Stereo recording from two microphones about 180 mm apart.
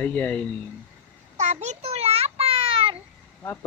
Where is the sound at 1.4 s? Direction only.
40° right (ahead or behind).